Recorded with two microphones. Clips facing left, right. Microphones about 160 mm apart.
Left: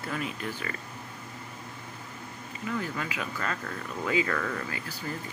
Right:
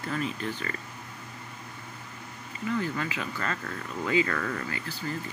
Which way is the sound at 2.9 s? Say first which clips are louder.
Right 1 dB; 5° left (ahead or behind).